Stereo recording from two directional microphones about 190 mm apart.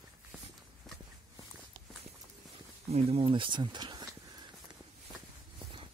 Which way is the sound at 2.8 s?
35° right (ahead or behind).